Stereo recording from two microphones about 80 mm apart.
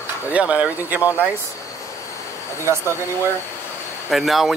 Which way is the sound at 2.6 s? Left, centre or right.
Right.